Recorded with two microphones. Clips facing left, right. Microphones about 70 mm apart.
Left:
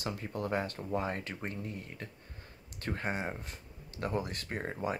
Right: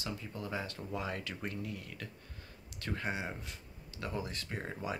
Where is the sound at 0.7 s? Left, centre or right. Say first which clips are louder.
Left 4 dB; left.